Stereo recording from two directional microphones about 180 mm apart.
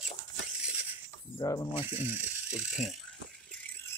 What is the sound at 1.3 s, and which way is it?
Speech, 20° left (ahead or behind).